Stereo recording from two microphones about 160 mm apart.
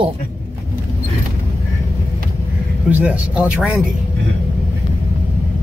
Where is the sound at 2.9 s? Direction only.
10° right (ahead or behind).